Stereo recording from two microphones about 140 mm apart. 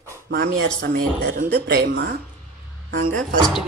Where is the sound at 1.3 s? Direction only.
70° right (ahead or behind).